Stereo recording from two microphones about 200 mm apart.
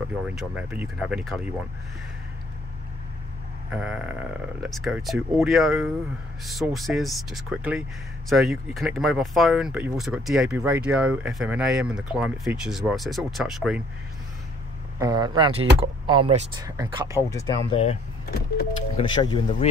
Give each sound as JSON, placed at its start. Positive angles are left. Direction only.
{"t": 0.3, "sound": "speech", "side_deg": -5}
{"t": 3.7, "sound": "speech", "side_deg": -5}
{"t": 15.0, "sound": "speech", "side_deg": -20}
{"t": 16.6, "sound": "speech", "side_deg": -15}
{"t": 17.3, "sound": "speech", "side_deg": 20}
{"t": 18.9, "sound": "speech", "side_deg": 25}